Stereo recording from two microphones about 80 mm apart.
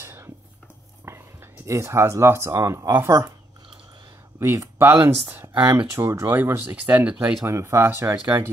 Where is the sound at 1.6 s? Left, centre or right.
Right.